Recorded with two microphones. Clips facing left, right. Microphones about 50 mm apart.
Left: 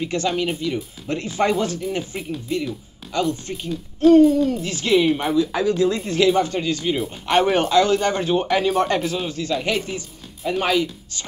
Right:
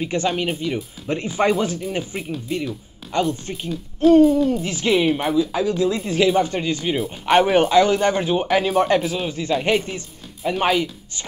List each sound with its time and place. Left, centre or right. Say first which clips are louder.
0.0 s a man's voice: even; right
3.1 s a man's voice: right 1 dB; right
3.6 s speech: left 1 dB; centre
4.5 s speech: even; right
5.0 s speech: even; centre; by 6.8 s right
7.4 s speech: right 2 dB; centre
9.3 s a man's voice: right 6 dB; right